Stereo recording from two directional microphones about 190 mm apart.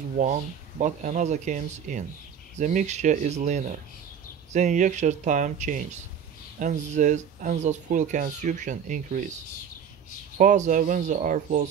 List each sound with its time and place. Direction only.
0.2 s speech: 40° right (ahead or behind)
10.3 s speech: 40° right (ahead or behind)